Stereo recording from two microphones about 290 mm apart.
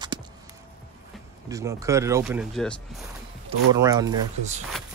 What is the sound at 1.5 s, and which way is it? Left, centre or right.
Speech, centre.